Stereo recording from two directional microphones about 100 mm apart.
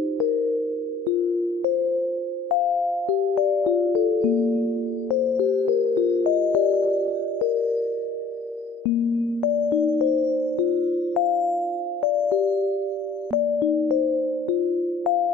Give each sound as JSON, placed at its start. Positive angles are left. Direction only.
{"t": 4.3, "sound": "music", "side_deg": -20}
{"t": 6.5, "sound": "music", "side_deg": 15}
{"t": 11.1, "sound": "music", "side_deg": 0}